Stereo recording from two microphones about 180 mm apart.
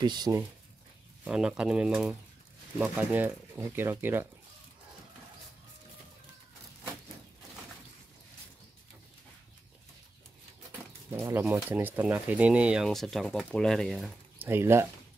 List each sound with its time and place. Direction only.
0.0 s speech: 25° right (ahead or behind)
1.2 s speech: 5° right (ahead or behind)
11.1 s speech: 15° right (ahead or behind)